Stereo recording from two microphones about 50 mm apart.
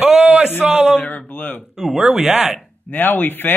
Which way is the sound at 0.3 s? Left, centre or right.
Right.